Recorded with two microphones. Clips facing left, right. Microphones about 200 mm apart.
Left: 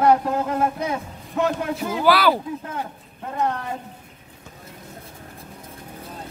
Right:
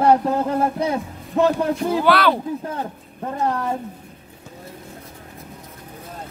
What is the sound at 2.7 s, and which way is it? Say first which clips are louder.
Speech: right 2 dB; 35° right (ahead or behind).